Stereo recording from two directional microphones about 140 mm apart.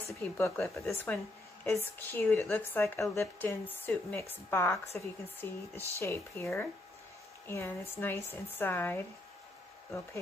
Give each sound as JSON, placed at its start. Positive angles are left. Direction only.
{"t": 0.2, "sound": "speech", "side_deg": 15}